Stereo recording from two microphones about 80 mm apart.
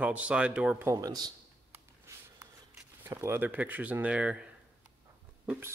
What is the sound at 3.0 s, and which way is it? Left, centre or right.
Speech, right.